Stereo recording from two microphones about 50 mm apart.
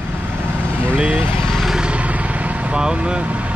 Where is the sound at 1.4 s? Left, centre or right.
Centre.